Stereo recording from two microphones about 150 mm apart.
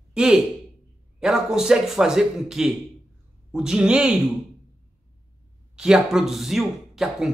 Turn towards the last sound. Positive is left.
turn(degrees=0)  # may be behind; listen again after turning